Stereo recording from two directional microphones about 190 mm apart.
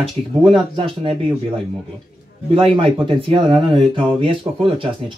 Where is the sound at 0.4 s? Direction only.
25° right (ahead or behind).